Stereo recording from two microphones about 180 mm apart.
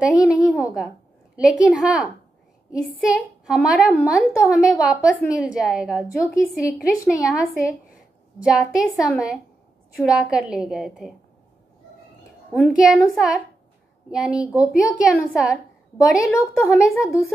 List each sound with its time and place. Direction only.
0.0 s a woman's voice: 5° right (ahead or behind)
12.5 s a woman's voice: 5° right (ahead or behind)
16.2 s a woman's voice: 15° left (ahead or behind)